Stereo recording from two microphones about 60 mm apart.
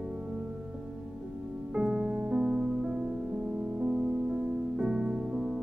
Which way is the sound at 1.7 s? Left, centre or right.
Centre.